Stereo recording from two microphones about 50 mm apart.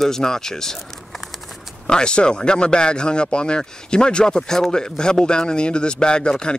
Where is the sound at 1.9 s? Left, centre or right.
Centre.